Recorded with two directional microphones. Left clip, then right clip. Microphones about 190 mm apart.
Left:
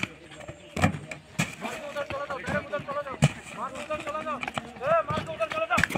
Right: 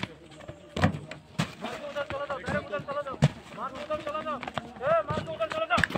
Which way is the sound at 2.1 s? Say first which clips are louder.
Left 2 dB; 45° left (ahead or behind).